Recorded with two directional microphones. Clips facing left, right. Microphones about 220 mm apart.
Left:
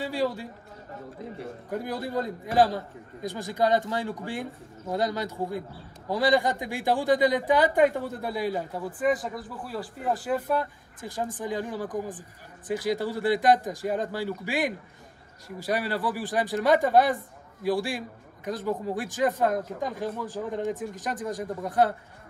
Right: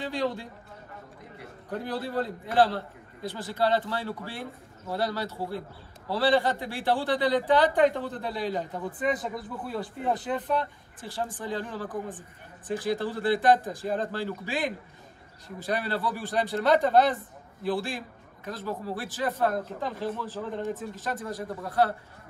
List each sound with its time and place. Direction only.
0.0 s a man's voice: 10° left (ahead or behind)
1.7 s a man's voice: 10° left (ahead or behind)
17.6 s a man's voice: 15° left (ahead or behind)